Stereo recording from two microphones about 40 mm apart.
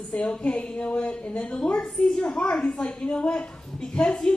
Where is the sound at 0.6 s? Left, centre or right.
Left.